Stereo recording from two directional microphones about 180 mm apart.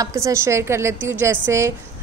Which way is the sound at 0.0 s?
15° right (ahead or behind).